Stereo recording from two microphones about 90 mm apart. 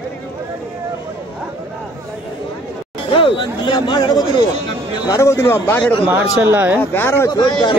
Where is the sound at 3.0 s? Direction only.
85° left; by 4.4 s 55° left (ahead or behind).